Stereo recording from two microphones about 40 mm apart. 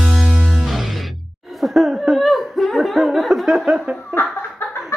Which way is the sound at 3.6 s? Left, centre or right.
Right.